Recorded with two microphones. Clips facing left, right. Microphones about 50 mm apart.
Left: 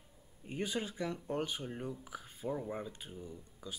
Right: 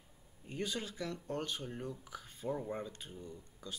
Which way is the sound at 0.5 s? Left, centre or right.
Centre.